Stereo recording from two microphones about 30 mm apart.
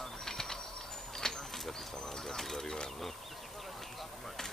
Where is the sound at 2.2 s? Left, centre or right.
Centre.